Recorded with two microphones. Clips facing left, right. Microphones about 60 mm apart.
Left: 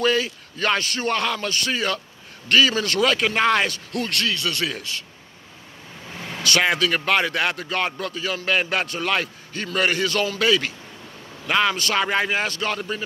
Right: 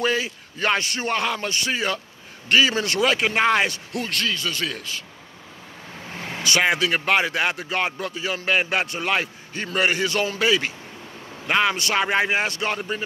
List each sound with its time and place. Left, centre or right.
0.0 s speech: centre
4.1 s a man's voice: centre
6.3 s speech: centre